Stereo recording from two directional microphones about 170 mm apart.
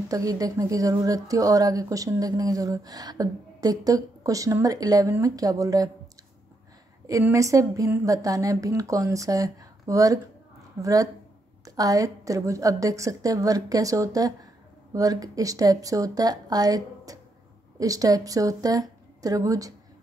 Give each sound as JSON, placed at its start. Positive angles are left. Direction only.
{"t": 0.1, "sound": "speech", "side_deg": -20}
{"t": 7.1, "sound": "speech", "side_deg": -20}